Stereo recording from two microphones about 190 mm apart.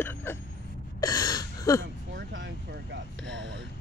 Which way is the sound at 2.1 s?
75° right (ahead or behind).